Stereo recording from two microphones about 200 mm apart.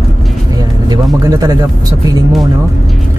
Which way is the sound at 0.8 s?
20° right (ahead or behind).